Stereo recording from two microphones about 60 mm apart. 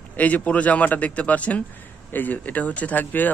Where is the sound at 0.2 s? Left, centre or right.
Left.